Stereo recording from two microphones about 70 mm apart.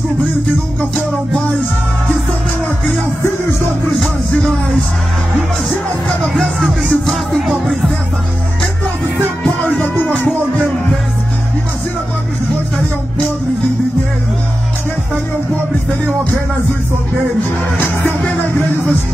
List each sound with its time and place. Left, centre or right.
6.3 s music: centre
9.4 s music: centre
18.0 s music: left